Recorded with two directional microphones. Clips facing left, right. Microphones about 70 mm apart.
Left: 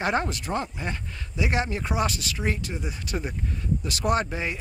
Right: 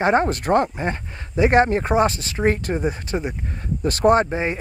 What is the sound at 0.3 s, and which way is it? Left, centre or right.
Speech, right.